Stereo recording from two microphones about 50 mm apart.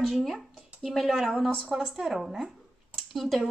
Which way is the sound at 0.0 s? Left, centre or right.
Centre.